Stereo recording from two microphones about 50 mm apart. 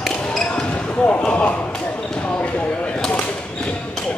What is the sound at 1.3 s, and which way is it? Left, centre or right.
Basketball bounce, left.